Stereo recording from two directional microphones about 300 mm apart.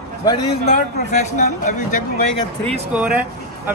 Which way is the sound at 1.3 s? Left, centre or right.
Left.